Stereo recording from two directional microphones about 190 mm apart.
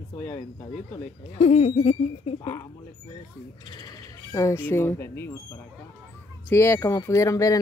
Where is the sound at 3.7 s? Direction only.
20° left (ahead or behind).